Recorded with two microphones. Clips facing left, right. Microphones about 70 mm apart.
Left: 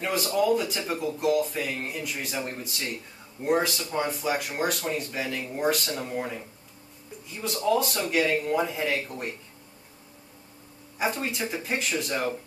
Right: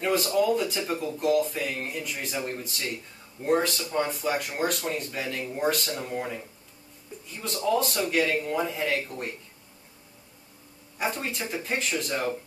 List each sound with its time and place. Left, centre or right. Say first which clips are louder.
0.0 s speech: right 1 dB; centre
7.6 s speech: even; centre
11.0 s speech: left 2 dB; centre